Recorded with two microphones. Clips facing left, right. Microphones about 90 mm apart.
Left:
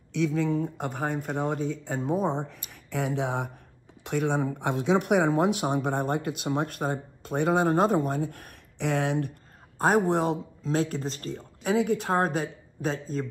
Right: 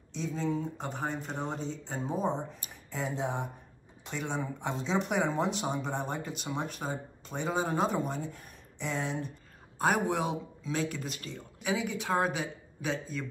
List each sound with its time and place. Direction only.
0.1 s speech: 65° left (ahead or behind)
2.7 s speech: 75° left (ahead or behind)
4.0 s speech: 60° left (ahead or behind)
9.8 s speech: 35° left (ahead or behind)